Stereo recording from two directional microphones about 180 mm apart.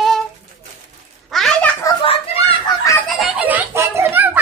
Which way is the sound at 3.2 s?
10° right (ahead or behind).